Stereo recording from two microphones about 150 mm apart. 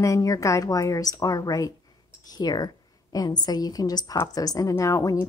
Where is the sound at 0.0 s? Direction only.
20° left (ahead or behind).